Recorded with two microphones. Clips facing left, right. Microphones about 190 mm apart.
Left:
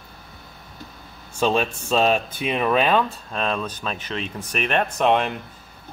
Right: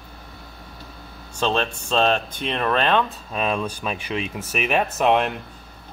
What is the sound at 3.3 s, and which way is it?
Speech, 10° right (ahead or behind).